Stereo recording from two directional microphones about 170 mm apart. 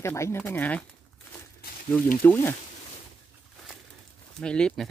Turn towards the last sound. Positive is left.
turn(degrees=5)  # may be behind; listen again after turning